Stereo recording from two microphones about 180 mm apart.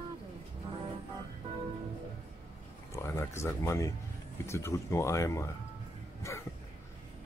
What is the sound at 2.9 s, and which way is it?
Speech, 15° left (ahead or behind).